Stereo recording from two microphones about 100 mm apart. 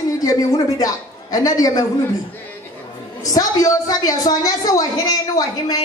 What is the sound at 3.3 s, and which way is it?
A woman's voice, 35° left (ahead or behind).